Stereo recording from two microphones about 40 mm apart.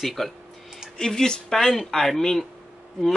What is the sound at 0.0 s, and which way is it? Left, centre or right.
Speech, centre.